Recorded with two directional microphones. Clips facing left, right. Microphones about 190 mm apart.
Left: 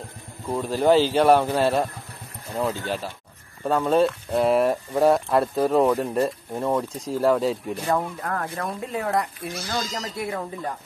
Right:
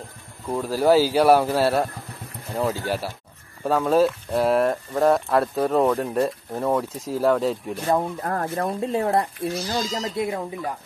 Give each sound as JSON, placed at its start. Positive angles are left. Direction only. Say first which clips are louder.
{"t": 0.5, "sound": "speech", "louder": "right 1 dB", "side_deg": -5}
{"t": 7.8, "sound": "speech", "louder": "right 3 dB", "side_deg": -15}
{"t": 8.2, "sound": "speech", "louder": "right 3 dB", "side_deg": -30}